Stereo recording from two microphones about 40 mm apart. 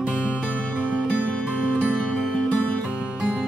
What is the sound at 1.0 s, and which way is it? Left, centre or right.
Music, left.